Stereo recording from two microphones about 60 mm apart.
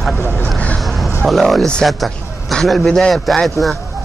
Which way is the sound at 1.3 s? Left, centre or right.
Centre.